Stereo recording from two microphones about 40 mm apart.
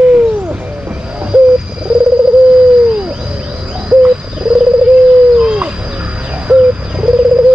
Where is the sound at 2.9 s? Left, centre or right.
Right.